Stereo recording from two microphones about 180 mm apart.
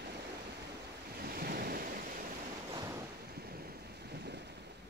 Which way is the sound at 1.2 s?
55° right (ahead or behind).